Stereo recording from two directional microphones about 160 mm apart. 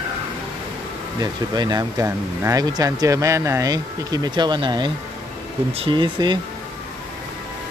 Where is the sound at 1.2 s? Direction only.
25° right (ahead or behind).